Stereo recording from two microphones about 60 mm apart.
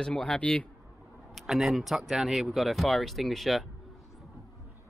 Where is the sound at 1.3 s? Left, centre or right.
Centre.